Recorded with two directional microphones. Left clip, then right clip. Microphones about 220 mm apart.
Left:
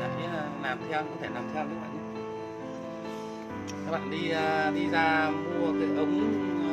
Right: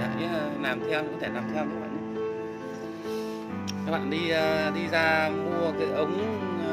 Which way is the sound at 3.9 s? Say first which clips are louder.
Right 4 dB; 35° right (ahead or behind).